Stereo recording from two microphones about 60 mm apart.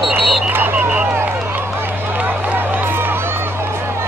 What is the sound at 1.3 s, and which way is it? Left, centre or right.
Run, right.